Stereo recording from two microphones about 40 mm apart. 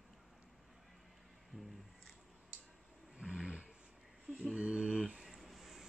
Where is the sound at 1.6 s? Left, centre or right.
Centre.